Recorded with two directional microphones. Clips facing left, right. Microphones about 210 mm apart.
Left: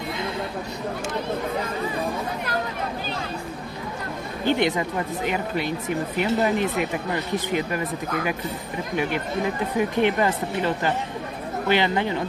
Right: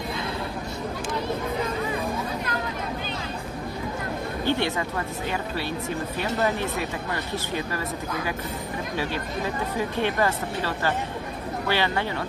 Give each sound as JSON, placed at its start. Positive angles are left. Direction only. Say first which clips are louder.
{"t": 4.5, "sound": "speech", "louder": "left 4 dB", "side_deg": 15}
{"t": 9.8, "sound": "speech", "louder": "left 4 dB", "side_deg": 15}